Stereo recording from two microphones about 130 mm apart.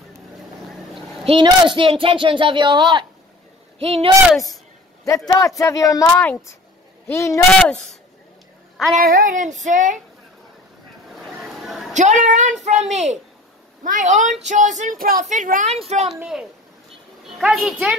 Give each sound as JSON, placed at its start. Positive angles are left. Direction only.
{"t": 0.7, "sound": "a sound", "side_deg": 0}
{"t": 1.2, "sound": "speech", "side_deg": -40}
{"t": 3.8, "sound": "speech", "side_deg": -50}
{"t": 5.0, "sound": "speech", "side_deg": 25}
{"t": 6.1, "sound": "a child's voice", "side_deg": 15}
{"t": 8.9, "sound": "speech", "side_deg": -75}
{"t": 11.1, "sound": "a sound", "side_deg": 0}
{"t": 11.9, "sound": "a child's voice", "side_deg": -65}
{"t": 13.8, "sound": "speech", "side_deg": -75}
{"t": 16.2, "sound": "a child's voice", "side_deg": -5}